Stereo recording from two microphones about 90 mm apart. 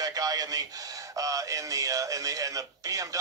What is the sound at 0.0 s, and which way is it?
Speech, 45° right (ahead or behind).